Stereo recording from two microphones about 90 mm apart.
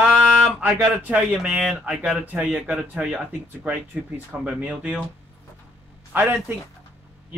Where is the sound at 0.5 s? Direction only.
10° right (ahead or behind).